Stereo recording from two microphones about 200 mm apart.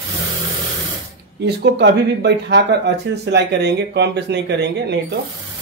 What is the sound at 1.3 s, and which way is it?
A man's voice, 55° right (ahead or behind).